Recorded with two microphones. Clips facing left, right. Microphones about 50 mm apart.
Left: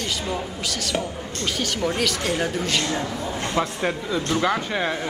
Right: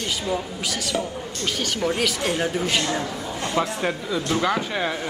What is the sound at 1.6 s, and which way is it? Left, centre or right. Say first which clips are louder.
A woman's voice: right 1 dB; centre.